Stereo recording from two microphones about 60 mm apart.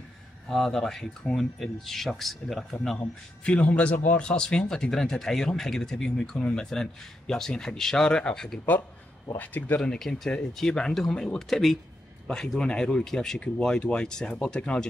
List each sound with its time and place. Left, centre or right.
0.5 s speech: centre
3.4 s speech: left
9.4 s speech: left
9.8 s speech: centre